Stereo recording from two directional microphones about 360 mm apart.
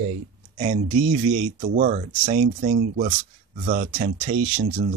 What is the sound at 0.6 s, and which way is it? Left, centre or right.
Speech, centre.